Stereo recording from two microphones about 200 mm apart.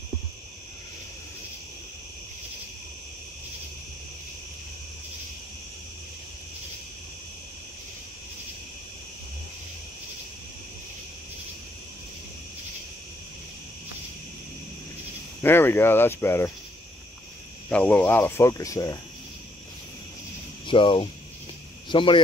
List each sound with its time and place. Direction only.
15.4 s speech: 10° left (ahead or behind)
17.6 s speech: 5° left (ahead or behind)
20.6 s speech: 25° left (ahead or behind)